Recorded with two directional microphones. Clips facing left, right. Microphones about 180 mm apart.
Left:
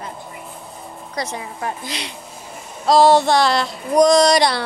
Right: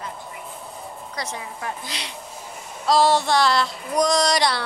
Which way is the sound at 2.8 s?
55° left (ahead or behind).